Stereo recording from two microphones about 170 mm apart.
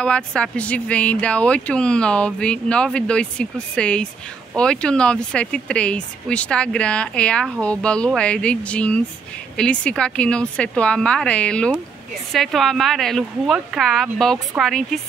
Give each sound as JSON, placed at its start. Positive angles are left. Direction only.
{"t": 0.0, "sound": "a woman's voice", "side_deg": 5}